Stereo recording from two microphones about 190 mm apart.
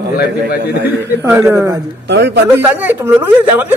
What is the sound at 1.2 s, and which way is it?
Speech, 15° right (ahead or behind).